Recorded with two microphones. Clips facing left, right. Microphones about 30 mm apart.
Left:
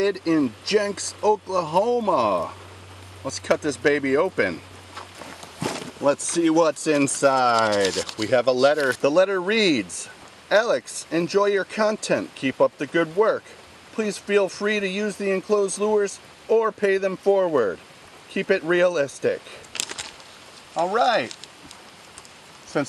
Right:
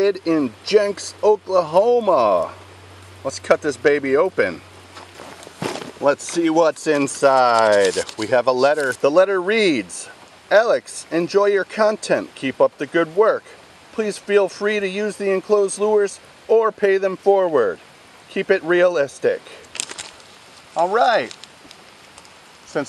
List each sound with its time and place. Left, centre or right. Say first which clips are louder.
0.3 s speech: right 4 dB; centre
5.6 s speech: right 3 dB; centre
7.2 s speech: right 5 dB; centre
7.5 s speech: right 6 dB; centre
8.7 s speech: right 1 dB; left
9.0 s speech: right 6 dB; centre
19.7 s a sound: even; centre
20.7 s speech: right 4 dB; centre
22.7 s speech: right 1 dB; centre